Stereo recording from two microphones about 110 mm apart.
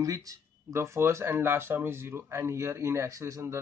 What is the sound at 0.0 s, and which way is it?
A man's voice, 30° right (ahead or behind).